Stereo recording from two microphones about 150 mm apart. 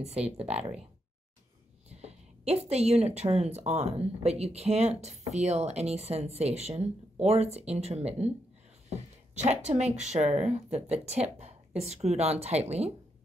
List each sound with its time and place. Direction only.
0.0 s speech: 45° right (ahead or behind)
1.9 s a sound: 45° right (ahead or behind)
3.2 s speech: 45° right (ahead or behind)